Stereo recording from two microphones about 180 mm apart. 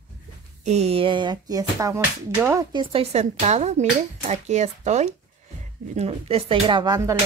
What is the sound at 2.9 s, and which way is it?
Speech, 35° right (ahead or behind).